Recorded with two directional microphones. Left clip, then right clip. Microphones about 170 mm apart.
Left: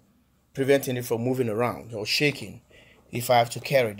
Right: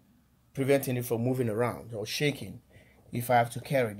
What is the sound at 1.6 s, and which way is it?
Speech, 20° left (ahead or behind).